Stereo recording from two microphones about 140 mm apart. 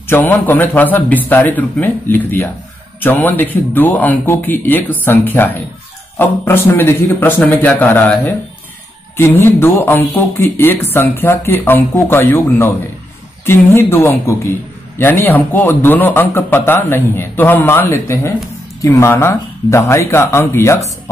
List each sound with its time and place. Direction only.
0.1 s speech: 15° left (ahead or behind)